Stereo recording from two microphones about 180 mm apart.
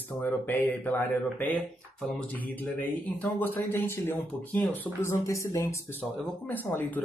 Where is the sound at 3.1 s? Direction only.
10° left (ahead or behind).